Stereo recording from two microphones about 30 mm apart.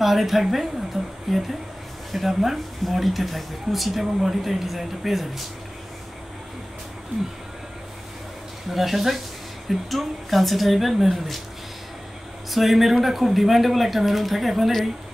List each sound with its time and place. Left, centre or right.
0.0 s speech: centre
1.0 s a sound: centre
2.1 s speech: centre
8.6 s speech: centre
12.4 s speech: centre